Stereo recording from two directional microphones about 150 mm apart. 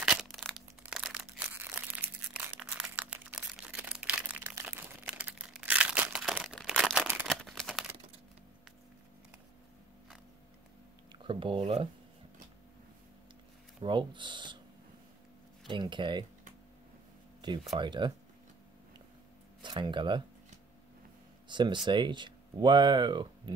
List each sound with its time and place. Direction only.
0.0 s crushing: 5° right (ahead or behind)
7.2 s a sound: centre (ahead or behind)
11.1 s speech: 35° right (ahead or behind)
13.8 s speech: 30° right (ahead or behind)
15.7 s speech: 30° right (ahead or behind)
17.4 s speech: 30° right (ahead or behind)
19.6 s speech: 30° right (ahead or behind)
21.5 s a sound: 30° right (ahead or behind)
21.8 s speech: 30° right (ahead or behind)